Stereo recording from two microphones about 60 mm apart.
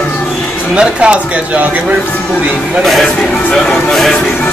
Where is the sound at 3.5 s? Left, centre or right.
Centre.